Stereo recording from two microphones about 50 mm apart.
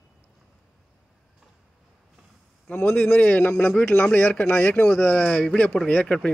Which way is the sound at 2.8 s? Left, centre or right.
Left.